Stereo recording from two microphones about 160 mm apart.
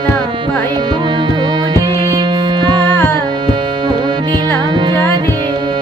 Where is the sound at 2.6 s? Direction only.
25° right (ahead or behind).